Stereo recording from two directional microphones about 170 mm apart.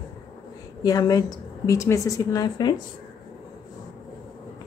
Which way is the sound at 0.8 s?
20° left (ahead or behind).